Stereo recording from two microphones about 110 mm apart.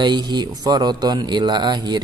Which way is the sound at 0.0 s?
40° right (ahead or behind).